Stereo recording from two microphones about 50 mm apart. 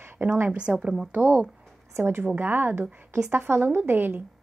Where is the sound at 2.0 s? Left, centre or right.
Right.